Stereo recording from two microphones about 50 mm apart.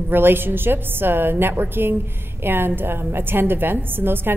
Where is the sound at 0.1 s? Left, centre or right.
Right.